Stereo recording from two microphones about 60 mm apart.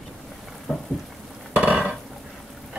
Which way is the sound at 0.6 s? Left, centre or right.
Centre.